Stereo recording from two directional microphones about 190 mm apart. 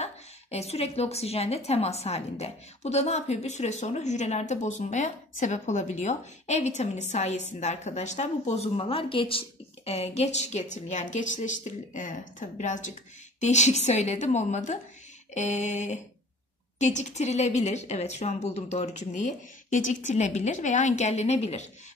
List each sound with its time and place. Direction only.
0.0 s a woman's voice: 35° left (ahead or behind)